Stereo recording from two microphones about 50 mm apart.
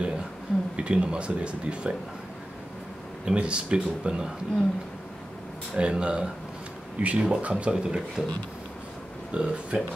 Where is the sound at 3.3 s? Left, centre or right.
Centre.